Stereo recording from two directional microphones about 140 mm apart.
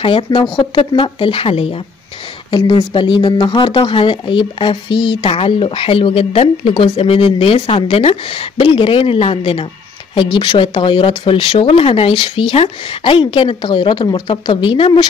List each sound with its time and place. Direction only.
0.0 s speech: 35° left (ahead or behind)